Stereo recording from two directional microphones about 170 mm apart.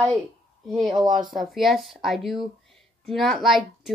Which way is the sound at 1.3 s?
Centre (ahead or behind).